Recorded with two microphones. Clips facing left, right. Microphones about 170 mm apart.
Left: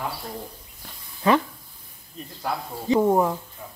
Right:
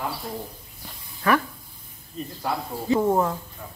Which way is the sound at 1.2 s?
25° left (ahead or behind).